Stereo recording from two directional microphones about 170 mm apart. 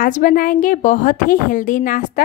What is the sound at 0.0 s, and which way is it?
A woman's voice, 55° left (ahead or behind).